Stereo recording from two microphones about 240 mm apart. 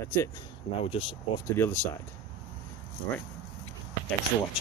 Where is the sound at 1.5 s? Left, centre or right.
Centre.